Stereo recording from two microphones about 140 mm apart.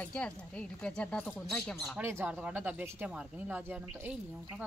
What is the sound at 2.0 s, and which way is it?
Speech, 15° right (ahead or behind).